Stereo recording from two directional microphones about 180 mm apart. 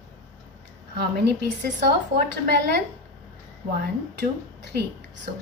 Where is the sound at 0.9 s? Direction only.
65° right (ahead or behind).